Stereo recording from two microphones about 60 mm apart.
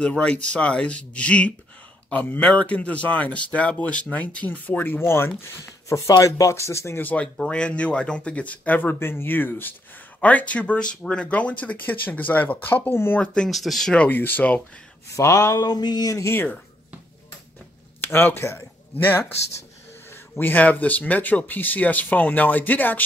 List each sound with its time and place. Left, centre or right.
0.0 s speech: centre; by 5.3 s left
5.4 s speech: left
7.0 s speech: left
7.3 s speech: centre; by 9.8 s left
10.2 s speech: left
13.2 s speech: centre
13.5 s speech: centre
13.9 s speech: left
15.1 s a sound: left
16.3 s speech: left
18.0 s speech: left